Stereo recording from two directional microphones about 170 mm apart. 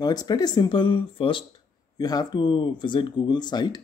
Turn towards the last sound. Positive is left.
turn(degrees=25)  # may be behind; listen again after turning